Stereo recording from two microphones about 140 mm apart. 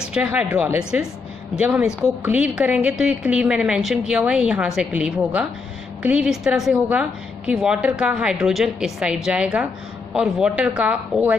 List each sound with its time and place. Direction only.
0.1 s speech: 10° right (ahead or behind)
1.9 s a woman's voice: 20° left (ahead or behind)
2.2 s a woman's voice: 10° right (ahead or behind)